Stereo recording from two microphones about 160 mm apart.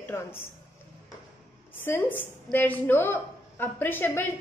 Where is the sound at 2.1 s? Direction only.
10° left (ahead or behind).